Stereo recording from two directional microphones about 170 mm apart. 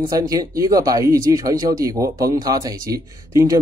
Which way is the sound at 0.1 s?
20° right (ahead or behind).